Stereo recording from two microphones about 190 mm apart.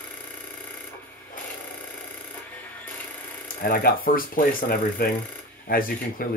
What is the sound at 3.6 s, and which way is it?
Speech, 50° left (ahead or behind).